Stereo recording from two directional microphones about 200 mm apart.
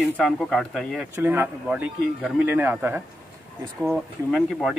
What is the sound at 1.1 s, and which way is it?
Speech, 10° right (ahead or behind).